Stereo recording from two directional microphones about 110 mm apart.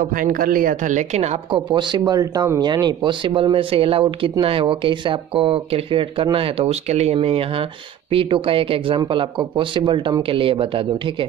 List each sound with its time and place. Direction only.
0.9 s a woman's voice: 85° right
1.5 s speech: 45° right (ahead or behind); by 7.2 s 85° right
7.2 s speech: 55° right (ahead or behind)